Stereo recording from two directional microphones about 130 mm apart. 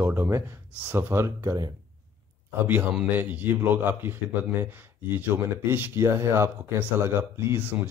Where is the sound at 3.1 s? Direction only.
15° right (ahead or behind).